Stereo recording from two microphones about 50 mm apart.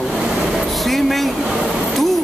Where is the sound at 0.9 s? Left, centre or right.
Centre.